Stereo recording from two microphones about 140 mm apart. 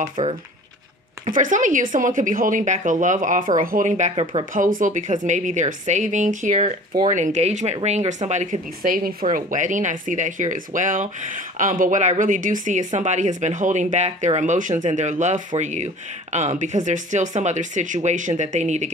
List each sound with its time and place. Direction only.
0.0 s speech: 55° right (ahead or behind)
1.2 s a woman's voice: 65° right (ahead or behind)
4.1 s speech: 40° right (ahead or behind)
4.6 s speech: 70° right (ahead or behind); by 18.9 s 55° right (ahead or behind)